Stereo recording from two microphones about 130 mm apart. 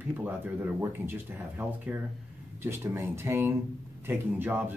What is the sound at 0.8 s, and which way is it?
Speech, 15° right (ahead or behind).